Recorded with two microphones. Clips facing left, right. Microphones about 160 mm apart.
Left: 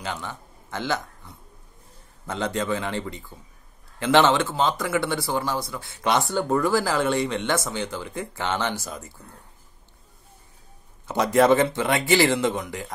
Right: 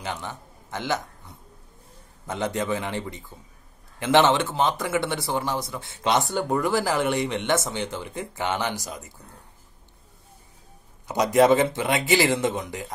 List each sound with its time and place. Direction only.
0.0 s a man's voice: 20° right (ahead or behind)
11.1 s speech: 20° right (ahead or behind)